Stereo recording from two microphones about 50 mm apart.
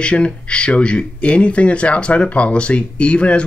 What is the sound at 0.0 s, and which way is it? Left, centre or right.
Speech, left.